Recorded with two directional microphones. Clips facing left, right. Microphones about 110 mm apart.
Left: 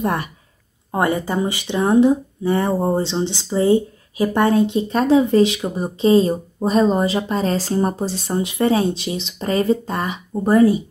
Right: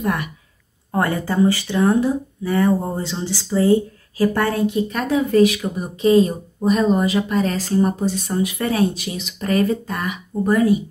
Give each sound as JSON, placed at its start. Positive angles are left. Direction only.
{"t": 0.0, "sound": "speech", "side_deg": 30}
{"t": 0.9, "sound": "speech", "side_deg": 20}